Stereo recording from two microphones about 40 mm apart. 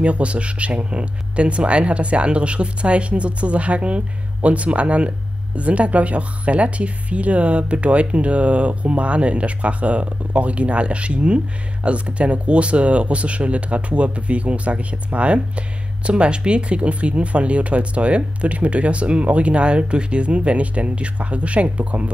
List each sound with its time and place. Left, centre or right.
0.0 s speech: right